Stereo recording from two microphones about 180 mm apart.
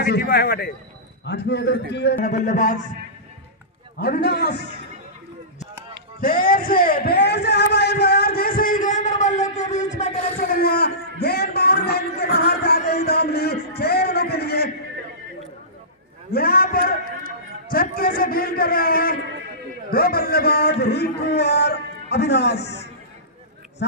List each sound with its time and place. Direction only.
0.0 s a man's voice: 60° left (ahead or behind)
1.2 s a man's voice: 70° left (ahead or behind)
2.2 s a man's voice: 40° left (ahead or behind)
4.0 s a man's voice: 60° left (ahead or behind)
6.2 s a sound: 50° left (ahead or behind)
10.6 s a sound: 60° left (ahead or behind)
16.3 s a man's voice: 55° left (ahead or behind)